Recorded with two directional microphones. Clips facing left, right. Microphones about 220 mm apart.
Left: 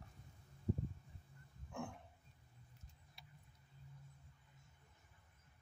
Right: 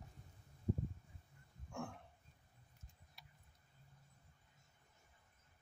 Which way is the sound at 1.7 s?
5° left (ahead or behind).